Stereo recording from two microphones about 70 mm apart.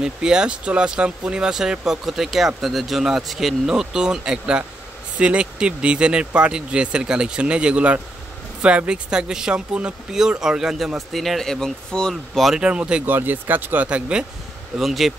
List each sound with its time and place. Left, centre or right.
0.0 s speech: centre
12.5 s speech: centre
13.0 s speech: right
13.8 s speech: centre
14.8 s speech: centre